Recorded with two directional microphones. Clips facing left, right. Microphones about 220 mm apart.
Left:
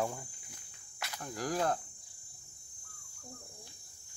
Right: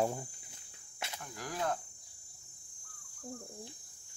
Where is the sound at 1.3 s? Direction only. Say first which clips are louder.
Left 4 dB; 40° left (ahead or behind).